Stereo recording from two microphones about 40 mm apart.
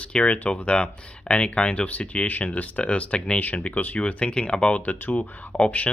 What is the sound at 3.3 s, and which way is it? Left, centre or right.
Speech, left.